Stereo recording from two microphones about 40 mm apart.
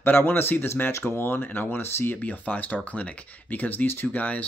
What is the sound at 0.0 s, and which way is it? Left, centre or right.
Speech, left.